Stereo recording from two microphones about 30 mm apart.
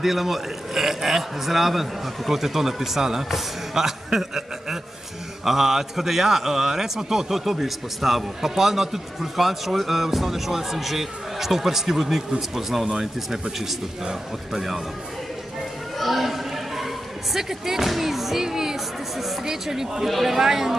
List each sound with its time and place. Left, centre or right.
0.0 s a man's voice: centre
16.0 s a sound: centre
17.8 s music: centre
18.4 s a man's voice: centre
20.1 s music: centre
20.3 s a man's voice: centre